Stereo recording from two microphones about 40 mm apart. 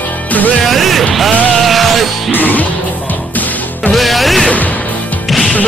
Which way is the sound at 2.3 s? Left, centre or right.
Left.